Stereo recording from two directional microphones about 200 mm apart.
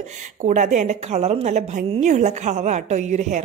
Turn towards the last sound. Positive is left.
turn(degrees=-35)  # may be behind; listen again after turning